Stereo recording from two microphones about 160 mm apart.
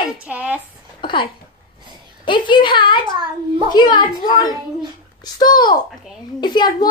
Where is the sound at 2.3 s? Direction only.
30° left (ahead or behind).